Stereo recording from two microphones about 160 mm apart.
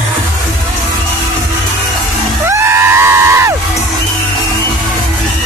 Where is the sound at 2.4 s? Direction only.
15° right (ahead or behind).